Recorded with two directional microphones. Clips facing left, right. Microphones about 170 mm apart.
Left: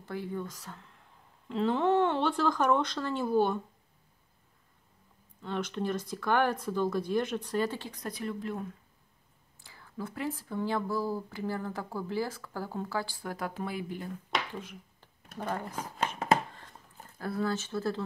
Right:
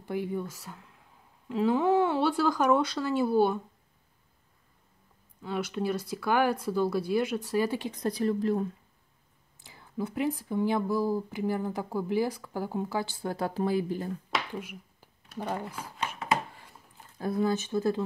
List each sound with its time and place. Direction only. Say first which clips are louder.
0.0 s speech: right 4 dB; 15° right (ahead or behind)
5.4 s speech: right 2 dB; 10° right (ahead or behind)
7.9 s speech: right 8 dB; 30° right (ahead or behind)
9.6 s speech: right 5 dB; 20° right (ahead or behind); by 14.1 s 35° right (ahead or behind)
14.5 s a sound: right 3 dB; 10° right (ahead or behind)
15.3 s speech: right 1 dB; 10° right (ahead or behind)
17.2 s speech: right 4 dB; 15° right (ahead or behind)